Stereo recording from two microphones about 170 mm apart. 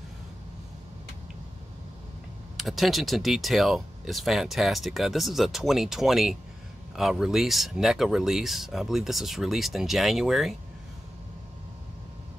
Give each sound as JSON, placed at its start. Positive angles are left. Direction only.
{"t": 2.5, "sound": "speech", "side_deg": 0}